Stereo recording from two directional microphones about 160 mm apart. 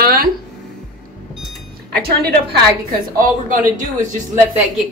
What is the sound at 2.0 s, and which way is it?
Speech, 70° right (ahead or behind).